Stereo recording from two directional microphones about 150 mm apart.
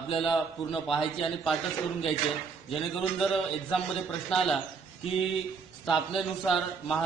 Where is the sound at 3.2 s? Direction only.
Centre (ahead or behind).